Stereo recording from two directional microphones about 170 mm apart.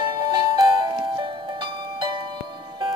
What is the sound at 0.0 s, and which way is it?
Music, 25° right (ahead or behind).